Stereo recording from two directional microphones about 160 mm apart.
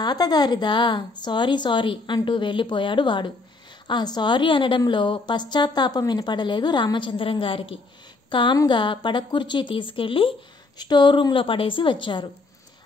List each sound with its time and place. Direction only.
0.0 s a woman's voice: 25° left (ahead or behind)